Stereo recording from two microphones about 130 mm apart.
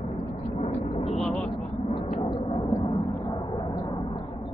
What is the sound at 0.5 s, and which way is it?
Vehicle, 50° left (ahead or behind).